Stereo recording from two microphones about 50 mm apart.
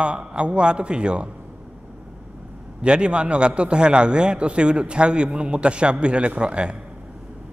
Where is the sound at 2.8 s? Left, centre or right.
Centre.